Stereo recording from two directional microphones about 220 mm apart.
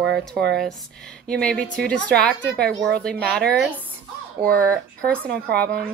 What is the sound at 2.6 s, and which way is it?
Speech, 45° right (ahead or behind).